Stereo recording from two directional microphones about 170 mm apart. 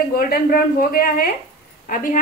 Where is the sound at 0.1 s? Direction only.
60° left (ahead or behind).